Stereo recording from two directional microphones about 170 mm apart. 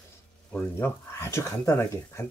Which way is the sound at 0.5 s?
10° left (ahead or behind).